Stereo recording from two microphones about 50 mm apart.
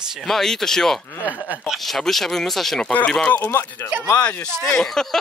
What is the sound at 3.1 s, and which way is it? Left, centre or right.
Speech, centre.